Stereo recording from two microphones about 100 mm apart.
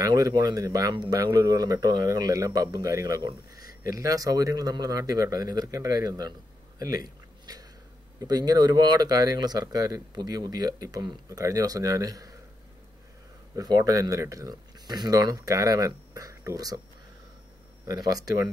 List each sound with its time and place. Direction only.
0.0 s speech: 40° right (ahead or behind)
6.8 s a sound: 40° right (ahead or behind)
8.2 s speech: 40° right (ahead or behind)
13.6 s speech: 40° right (ahead or behind)
13.9 s speech: 30° right (ahead or behind)
17.8 s speech: 40° right (ahead or behind)